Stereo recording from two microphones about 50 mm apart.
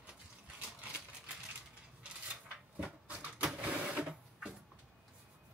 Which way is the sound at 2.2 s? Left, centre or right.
Right.